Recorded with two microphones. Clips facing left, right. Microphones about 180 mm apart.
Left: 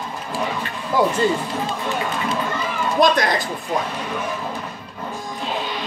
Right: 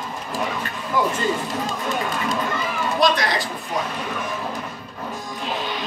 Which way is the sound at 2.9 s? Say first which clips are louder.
Left 3 dB; 50° left (ahead or behind).